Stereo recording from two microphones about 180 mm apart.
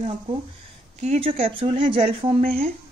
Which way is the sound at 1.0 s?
35° right (ahead or behind).